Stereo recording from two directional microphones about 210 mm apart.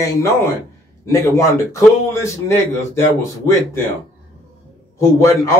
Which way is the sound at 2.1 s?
15° left (ahead or behind).